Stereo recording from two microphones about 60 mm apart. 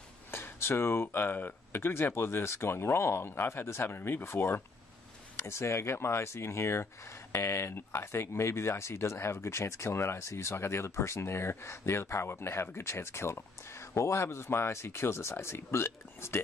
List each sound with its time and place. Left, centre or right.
0.3 s speech: left